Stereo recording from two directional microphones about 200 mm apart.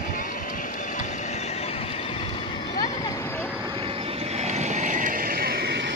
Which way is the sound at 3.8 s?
30° right (ahead or behind).